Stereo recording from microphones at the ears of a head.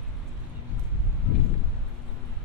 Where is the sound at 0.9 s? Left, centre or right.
Left.